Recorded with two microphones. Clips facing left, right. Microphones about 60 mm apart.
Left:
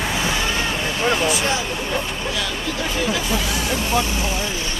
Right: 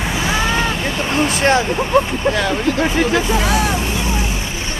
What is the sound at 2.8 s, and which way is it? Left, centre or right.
Music, right.